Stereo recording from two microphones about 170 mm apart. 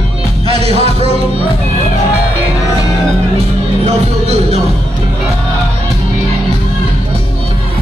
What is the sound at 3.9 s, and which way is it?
Music, 40° right (ahead or behind).